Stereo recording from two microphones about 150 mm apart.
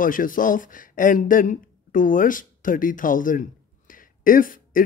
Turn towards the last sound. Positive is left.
turn(degrees=65)  # may be behind; listen again after turning